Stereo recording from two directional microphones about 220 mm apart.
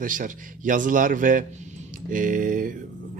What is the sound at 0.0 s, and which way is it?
A man's voice, 35° right (ahead or behind).